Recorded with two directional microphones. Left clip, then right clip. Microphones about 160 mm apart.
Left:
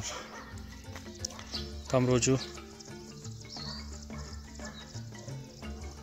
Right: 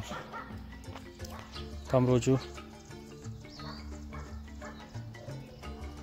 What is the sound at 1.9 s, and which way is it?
Speech, 10° right (ahead or behind).